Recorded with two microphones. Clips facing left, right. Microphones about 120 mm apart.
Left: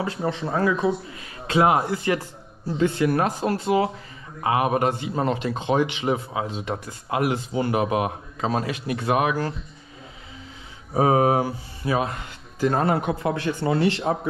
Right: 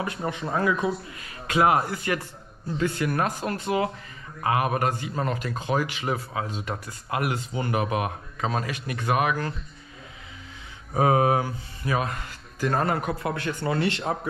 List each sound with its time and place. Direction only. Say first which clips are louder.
0.0 s speech: left 3 dB; 30° left (ahead or behind)
11.0 s speech: left 2 dB; 25° left (ahead or behind)